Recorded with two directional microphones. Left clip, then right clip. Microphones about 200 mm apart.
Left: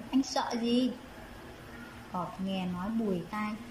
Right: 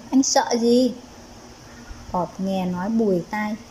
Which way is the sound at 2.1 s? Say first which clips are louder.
Right 12 dB; 40° right (ahead or behind).